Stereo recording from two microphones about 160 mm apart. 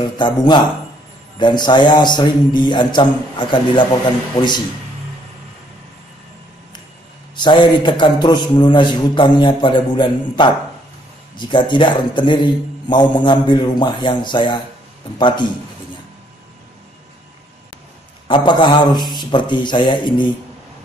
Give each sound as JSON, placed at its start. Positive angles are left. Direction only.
{"t": 0.2, "sound": "a man's voice", "side_deg": 30}
{"t": 7.3, "sound": "a man's voice", "side_deg": 30}
{"t": 18.3, "sound": "a man's voice", "side_deg": 30}